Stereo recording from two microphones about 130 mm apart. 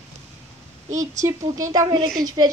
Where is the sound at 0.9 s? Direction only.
25° right (ahead or behind).